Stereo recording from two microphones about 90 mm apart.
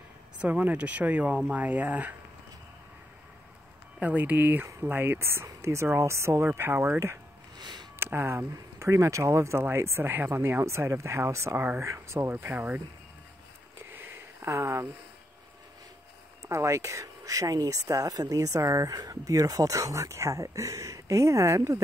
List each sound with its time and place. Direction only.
0.4 s speech: 15° right (ahead or behind)
4.0 s speech: 20° right (ahead or behind)
7.5 s a sound: 50° right (ahead or behind)
7.9 s speech: 25° right (ahead or behind)
11.8 s speech: 30° right (ahead or behind)
13.7 s a sound: 25° right (ahead or behind)
16.4 s speech: 35° right (ahead or behind)